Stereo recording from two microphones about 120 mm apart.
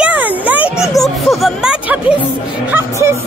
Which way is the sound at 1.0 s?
Centre (ahead or behind).